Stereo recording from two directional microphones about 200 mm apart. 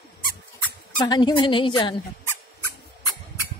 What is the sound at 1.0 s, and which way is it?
Speech, 20° left (ahead or behind).